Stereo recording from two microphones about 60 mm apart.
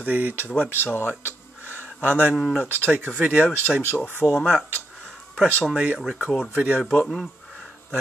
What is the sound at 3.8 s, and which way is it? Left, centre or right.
Speech, left.